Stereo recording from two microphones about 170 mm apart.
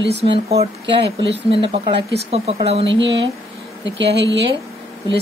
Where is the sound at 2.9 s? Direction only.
90° right.